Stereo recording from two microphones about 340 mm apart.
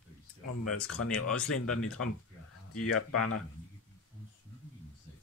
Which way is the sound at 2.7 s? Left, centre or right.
Left.